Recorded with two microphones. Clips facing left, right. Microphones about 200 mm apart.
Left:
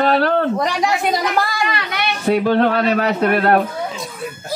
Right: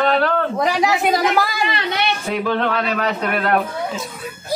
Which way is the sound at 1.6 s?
25° right (ahead or behind).